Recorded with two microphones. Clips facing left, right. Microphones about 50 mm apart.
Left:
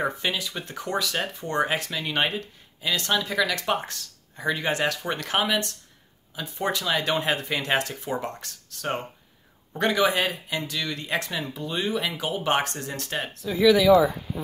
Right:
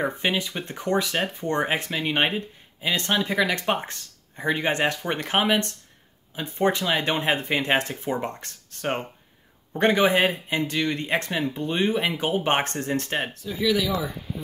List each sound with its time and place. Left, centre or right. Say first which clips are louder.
0.2 s speech: right 3 dB; right